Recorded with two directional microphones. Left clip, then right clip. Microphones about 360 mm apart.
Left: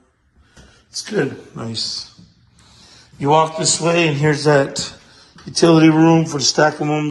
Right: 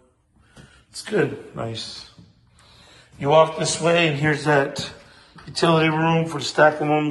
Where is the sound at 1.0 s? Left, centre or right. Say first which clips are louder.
Left 1 dB; centre.